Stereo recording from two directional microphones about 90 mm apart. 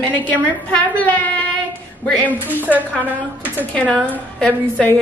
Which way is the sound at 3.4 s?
20° left (ahead or behind).